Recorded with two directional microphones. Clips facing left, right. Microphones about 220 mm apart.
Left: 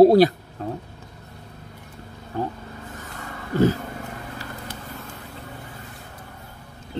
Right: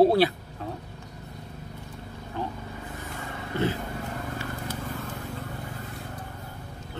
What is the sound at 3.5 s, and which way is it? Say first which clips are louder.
Speech: left 8 dB; 40° left (ahead or behind).